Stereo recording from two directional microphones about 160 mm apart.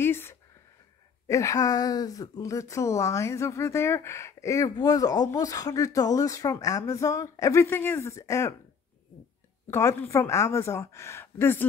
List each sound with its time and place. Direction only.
0.0 s a sound: 15° left (ahead or behind)
1.2 s speech: 20° left (ahead or behind)
9.7 s a woman's voice: 15° left (ahead or behind)